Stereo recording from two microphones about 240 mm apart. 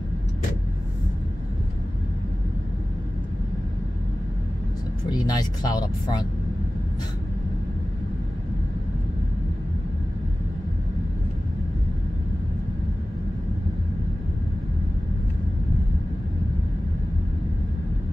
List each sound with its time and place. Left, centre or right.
5.1 s speech: centre